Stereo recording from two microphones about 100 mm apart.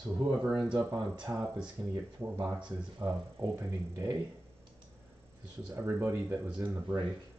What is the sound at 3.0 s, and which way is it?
Speech, 30° right (ahead or behind).